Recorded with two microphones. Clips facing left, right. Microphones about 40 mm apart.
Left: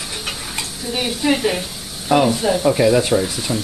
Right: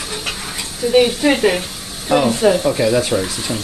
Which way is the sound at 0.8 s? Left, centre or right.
Right.